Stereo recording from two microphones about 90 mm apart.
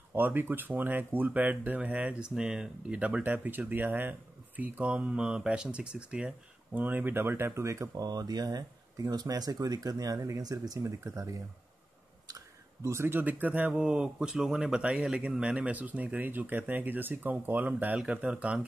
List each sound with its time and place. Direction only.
0.1 s speech: 20° right (ahead or behind)
12.3 s a sound: 40° right (ahead or behind)
13.2 s speech: 20° right (ahead or behind)